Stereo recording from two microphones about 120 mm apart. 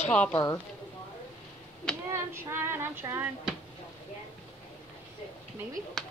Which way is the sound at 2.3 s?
20° right (ahead or behind).